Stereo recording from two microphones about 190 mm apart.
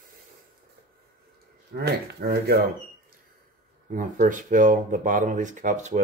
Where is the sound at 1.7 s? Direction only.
60° right (ahead or behind).